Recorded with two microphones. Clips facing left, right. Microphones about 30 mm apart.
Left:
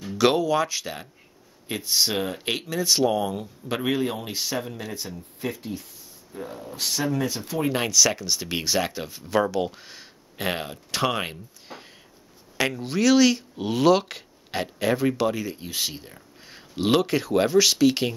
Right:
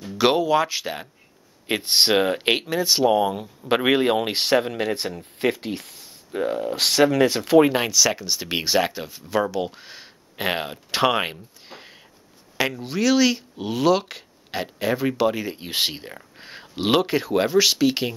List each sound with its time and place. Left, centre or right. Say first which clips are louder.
0.2 s speech: right 2 dB; centre
1.7 s speech: right 5 dB; right
3.6 s speech: right 7 dB; right
7.7 s speech: right 1 dB; centre
9.0 s speech: even; centre
12.5 s speech: right 1 dB; centre
15.4 s speech: right 2 dB; right
15.7 s speech: right 6 dB; right; by 18.1 s centre